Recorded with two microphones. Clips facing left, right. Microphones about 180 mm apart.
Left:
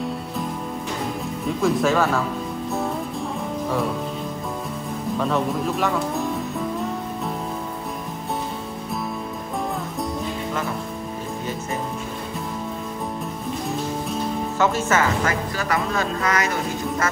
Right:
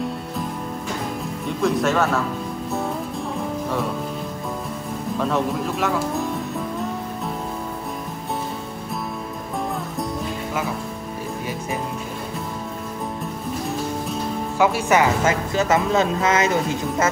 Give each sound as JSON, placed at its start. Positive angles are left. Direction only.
{"t": 1.6, "sound": "speech", "side_deg": 0}
{"t": 5.2, "sound": "speech", "side_deg": 0}
{"t": 14.6, "sound": "speech", "side_deg": -10}